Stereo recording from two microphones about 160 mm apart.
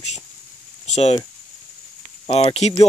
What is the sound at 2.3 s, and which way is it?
Speech, 40° left (ahead or behind).